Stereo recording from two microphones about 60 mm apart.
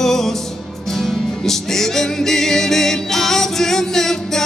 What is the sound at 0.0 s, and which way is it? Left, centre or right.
Music, centre.